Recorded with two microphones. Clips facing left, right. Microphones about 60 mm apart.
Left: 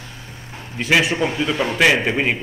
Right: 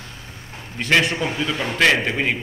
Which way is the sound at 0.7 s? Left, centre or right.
Centre.